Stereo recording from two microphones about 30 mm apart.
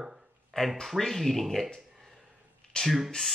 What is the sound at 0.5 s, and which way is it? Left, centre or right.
Speech, left.